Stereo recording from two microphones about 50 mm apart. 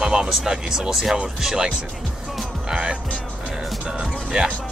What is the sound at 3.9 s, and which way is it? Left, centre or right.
Music, centre.